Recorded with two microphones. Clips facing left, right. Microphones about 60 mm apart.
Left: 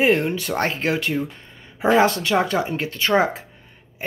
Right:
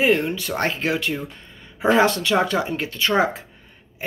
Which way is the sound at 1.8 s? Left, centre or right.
Centre.